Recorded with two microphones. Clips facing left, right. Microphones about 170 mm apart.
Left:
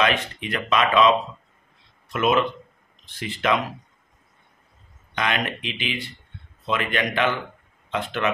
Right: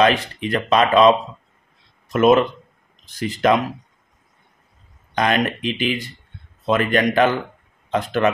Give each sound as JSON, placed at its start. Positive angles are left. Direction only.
{"t": 0.0, "sound": "speech", "side_deg": -35}
{"t": 2.1, "sound": "speech", "side_deg": -40}
{"t": 5.1, "sound": "speech", "side_deg": -40}